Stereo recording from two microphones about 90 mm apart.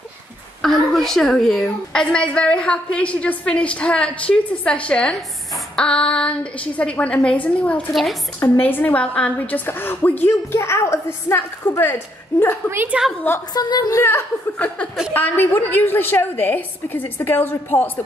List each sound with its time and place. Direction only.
0.6 s a woman's voice: 5° left (ahead or behind)
7.9 s a woman's voice: centre (ahead or behind)
8.4 s a woman's voice: 20° left (ahead or behind)
9.7 s a woman's voice: 25° left (ahead or behind)
12.7 s a woman's voice: 20° right (ahead or behind)
13.5 s a woman's voice: 45° left (ahead or behind)
14.0 s a woman's voice: 25° left (ahead or behind)